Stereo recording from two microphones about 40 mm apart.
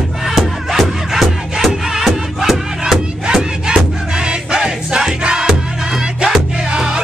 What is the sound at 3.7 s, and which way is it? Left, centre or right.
Music, right.